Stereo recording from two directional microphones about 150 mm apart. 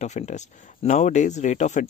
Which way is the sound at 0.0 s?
50° left (ahead or behind).